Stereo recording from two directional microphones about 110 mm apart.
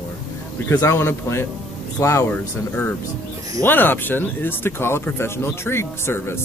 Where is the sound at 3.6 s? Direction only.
20° left (ahead or behind).